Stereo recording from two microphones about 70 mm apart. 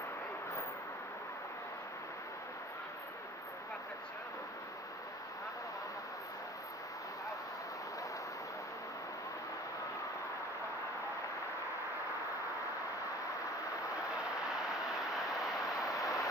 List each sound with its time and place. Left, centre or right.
14.5 s vehicle: centre
15.8 s vehicle: left